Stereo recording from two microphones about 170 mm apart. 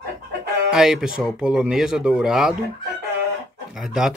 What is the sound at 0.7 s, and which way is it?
Speech, 5° right (ahead or behind).